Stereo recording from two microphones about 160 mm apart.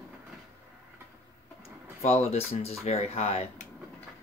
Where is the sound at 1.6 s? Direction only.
40° left (ahead or behind).